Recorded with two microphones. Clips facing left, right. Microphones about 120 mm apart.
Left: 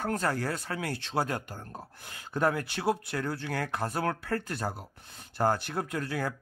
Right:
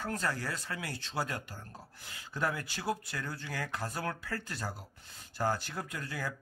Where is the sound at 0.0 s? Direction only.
55° left (ahead or behind).